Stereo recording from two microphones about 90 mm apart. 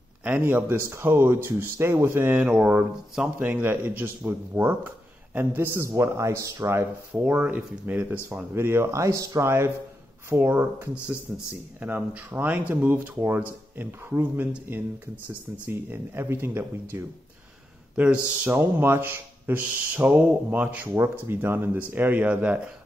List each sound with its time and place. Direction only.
0.2 s speech: 20° right (ahead or behind)
2.4 s speech: 10° right (ahead or behind)
8.5 s speech: 30° right (ahead or behind)
17.9 s speech: 15° right (ahead or behind)